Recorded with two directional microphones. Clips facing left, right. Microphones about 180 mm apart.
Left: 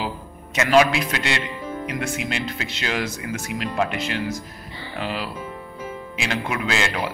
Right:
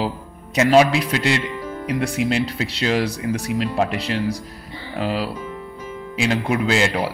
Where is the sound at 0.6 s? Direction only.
35° right (ahead or behind).